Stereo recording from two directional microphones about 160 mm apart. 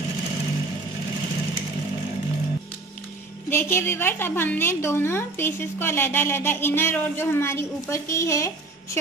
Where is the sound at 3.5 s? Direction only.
15° left (ahead or behind).